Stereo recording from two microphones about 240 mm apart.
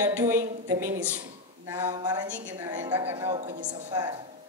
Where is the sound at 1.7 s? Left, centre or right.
Centre.